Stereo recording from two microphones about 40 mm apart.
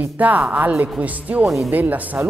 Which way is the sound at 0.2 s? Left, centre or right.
Right.